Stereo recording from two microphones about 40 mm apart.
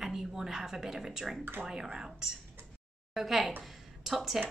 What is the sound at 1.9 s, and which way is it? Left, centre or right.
A woman's voice, centre.